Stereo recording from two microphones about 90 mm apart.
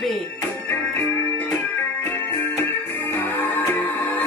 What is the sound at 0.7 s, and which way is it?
Music, 30° left (ahead or behind).